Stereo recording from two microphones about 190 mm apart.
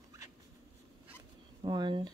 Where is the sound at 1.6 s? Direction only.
20° right (ahead or behind).